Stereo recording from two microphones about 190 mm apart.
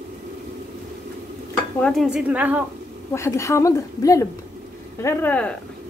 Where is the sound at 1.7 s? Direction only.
5° left (ahead or behind).